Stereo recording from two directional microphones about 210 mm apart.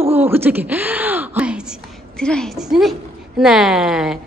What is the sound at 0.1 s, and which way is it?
Speech, 10° right (ahead or behind).